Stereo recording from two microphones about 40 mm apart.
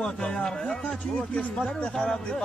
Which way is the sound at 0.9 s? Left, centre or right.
Left.